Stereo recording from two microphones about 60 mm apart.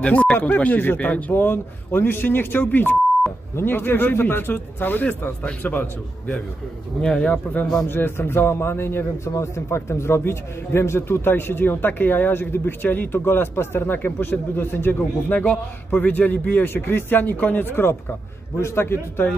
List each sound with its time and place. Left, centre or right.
0.0 s a man's voice: left
7.0 s speech: centre
7.9 s a man's voice: left